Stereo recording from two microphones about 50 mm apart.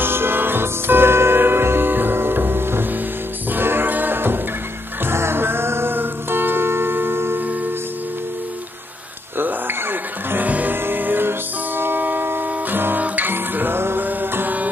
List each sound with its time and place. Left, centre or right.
0.0 s music: right
5.0 s music: right
9.4 s music: right
10.4 s music: right